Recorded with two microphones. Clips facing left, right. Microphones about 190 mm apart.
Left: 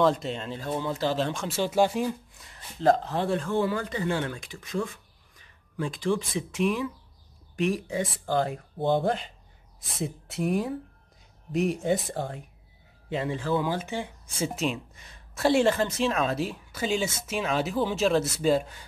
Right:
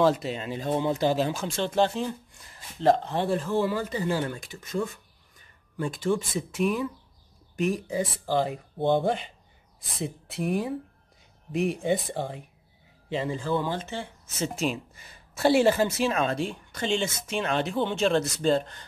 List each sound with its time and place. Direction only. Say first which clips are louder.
0.0 s speech: right 1 dB; 5° right (ahead or behind)
0.6 s speech: right 6 dB; 20° right (ahead or behind); by 1.6 s 5° right (ahead or behind)
1.6 s speech: left 1 dB; 10° left (ahead or behind)
14.5 s speech: even; centre (ahead or behind)